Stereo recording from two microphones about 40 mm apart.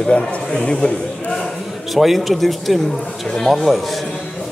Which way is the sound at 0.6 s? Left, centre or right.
Left.